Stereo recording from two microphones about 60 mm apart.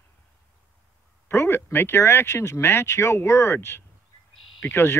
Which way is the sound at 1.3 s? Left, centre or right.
Left.